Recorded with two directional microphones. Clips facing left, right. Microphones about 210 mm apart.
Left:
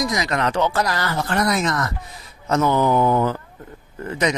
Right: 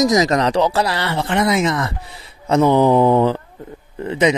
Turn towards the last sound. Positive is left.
turn(degrees=-20)  # may be behind; listen again after turning